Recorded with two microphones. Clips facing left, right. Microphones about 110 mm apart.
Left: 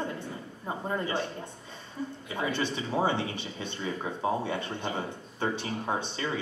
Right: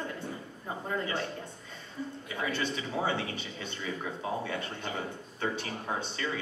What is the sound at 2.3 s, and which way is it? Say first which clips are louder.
Speech: left 3 dB; 25° left (ahead or behind).